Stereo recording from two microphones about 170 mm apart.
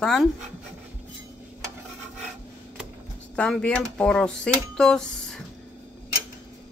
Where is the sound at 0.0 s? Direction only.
5° left (ahead or behind).